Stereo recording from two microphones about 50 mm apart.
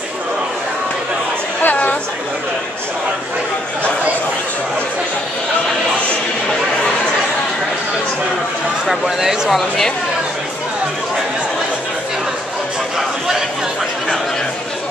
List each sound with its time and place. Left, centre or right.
1.6 s chatter: left
8.8 s speech: centre